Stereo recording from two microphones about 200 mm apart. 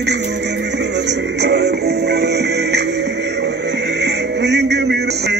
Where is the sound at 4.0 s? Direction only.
60° right (ahead or behind).